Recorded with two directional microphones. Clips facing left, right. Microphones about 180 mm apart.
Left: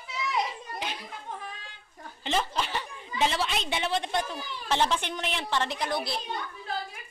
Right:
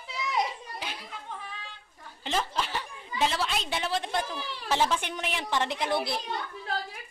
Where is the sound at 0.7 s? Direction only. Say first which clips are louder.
Left 3 dB; 10° right (ahead or behind).